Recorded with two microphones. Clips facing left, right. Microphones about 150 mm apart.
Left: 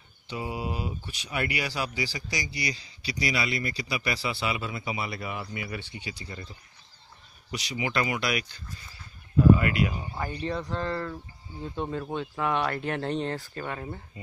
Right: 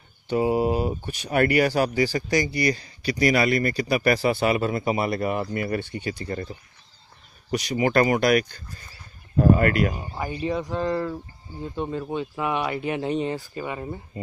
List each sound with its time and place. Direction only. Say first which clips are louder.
0.3 s speech: right 12 dB; 45° right (ahead or behind)
10.1 s speech: right 4 dB; 10° right (ahead or behind)
11.6 s speech: right 3 dB; centre (ahead or behind)